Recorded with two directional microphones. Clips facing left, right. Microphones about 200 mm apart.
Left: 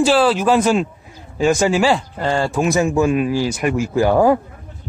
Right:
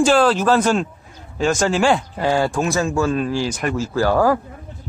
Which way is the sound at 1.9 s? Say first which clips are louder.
Right 1 dB; 5° right (ahead or behind).